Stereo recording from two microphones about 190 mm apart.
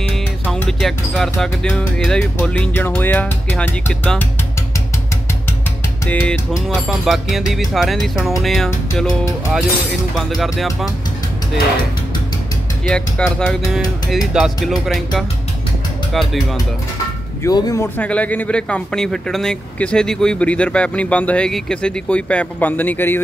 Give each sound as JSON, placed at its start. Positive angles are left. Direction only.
{"t": 0.5, "sound": "speech", "side_deg": 0}
{"t": 6.0, "sound": "speech", "side_deg": 5}
{"t": 10.1, "sound": "speech", "side_deg": 0}
{"t": 12.8, "sound": "speech", "side_deg": 5}
{"t": 17.4, "sound": "a man's voice", "side_deg": 20}
{"t": 17.9, "sound": "speech", "side_deg": 5}